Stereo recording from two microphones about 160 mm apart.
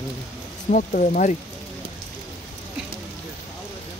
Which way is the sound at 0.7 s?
55° left (ahead or behind).